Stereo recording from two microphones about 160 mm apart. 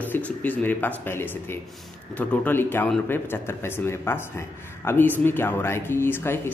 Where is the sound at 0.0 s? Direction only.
10° left (ahead or behind).